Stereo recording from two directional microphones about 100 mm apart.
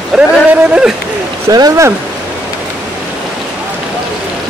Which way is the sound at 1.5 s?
35° right (ahead or behind).